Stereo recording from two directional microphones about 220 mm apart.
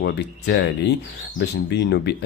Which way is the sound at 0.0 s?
50° left (ahead or behind).